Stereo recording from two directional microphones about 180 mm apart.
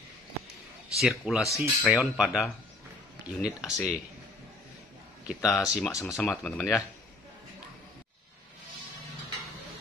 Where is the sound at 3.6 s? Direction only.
20° left (ahead or behind).